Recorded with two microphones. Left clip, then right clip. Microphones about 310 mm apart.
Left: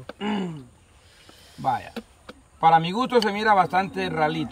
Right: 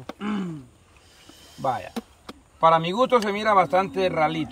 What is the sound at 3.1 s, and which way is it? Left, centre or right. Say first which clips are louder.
Speech: left 2 dB; centre.